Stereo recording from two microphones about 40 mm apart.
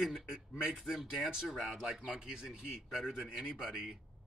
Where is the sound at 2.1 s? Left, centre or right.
Centre.